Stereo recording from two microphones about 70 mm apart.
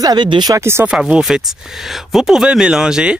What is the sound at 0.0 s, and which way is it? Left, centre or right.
Speech, right.